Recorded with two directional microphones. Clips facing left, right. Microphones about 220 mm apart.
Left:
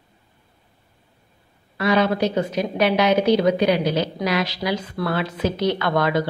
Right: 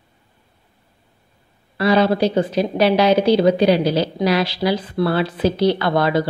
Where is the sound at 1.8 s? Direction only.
35° right (ahead or behind).